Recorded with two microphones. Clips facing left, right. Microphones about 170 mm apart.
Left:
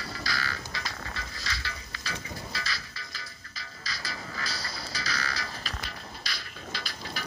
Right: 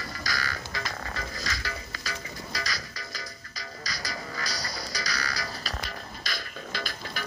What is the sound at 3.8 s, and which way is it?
Music, 40° right (ahead or behind).